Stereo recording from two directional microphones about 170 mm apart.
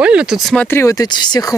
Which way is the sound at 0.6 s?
15° left (ahead or behind).